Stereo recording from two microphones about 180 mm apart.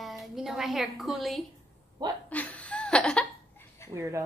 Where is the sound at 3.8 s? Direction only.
15° left (ahead or behind).